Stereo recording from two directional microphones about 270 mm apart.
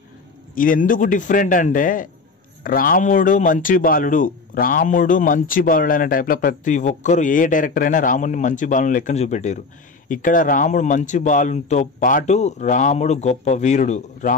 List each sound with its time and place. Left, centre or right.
0.6 s speech: left